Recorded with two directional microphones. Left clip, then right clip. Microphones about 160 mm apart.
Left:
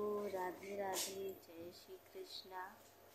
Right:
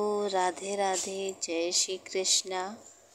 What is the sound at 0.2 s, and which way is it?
Speech, 50° right (ahead or behind).